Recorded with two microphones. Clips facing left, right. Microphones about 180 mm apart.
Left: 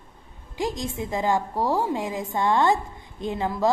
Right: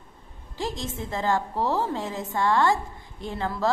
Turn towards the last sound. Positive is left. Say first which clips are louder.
# left 3 dB
turn(degrees=15)  # may be behind; listen again after turning